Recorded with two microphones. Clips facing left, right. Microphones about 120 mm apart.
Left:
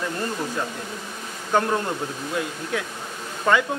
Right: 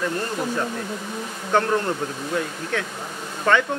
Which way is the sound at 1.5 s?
10° left (ahead or behind).